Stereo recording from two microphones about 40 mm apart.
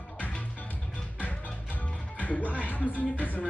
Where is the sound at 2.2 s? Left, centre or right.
Left.